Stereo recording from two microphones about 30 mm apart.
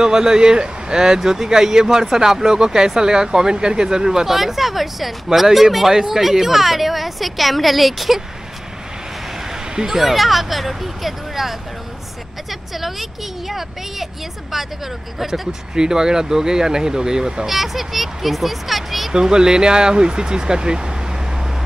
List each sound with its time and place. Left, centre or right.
0.0 s a man's voice: centre
4.3 s a woman's voice: centre
9.8 s a woman's voice: centre
15.1 s speech: centre
15.7 s a man's voice: right
17.5 s a woman's voice: centre
19.1 s a man's voice: right